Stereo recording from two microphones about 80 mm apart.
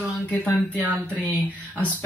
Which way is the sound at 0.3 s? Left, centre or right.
Centre.